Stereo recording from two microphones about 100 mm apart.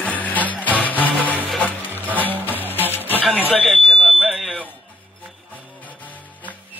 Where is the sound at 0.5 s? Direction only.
15° left (ahead or behind).